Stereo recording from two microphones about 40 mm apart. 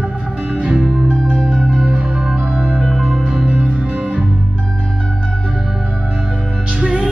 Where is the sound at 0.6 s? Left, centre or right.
Right.